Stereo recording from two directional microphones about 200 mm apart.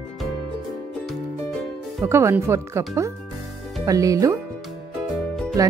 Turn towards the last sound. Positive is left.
turn(degrees=-15)  # may be behind; listen again after turning